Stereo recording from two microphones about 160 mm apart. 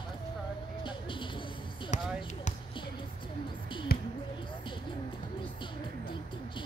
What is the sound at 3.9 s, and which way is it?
Basketball bounce, 70° left (ahead or behind).